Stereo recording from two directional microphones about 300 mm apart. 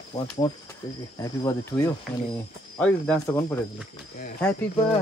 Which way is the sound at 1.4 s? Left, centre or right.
Centre.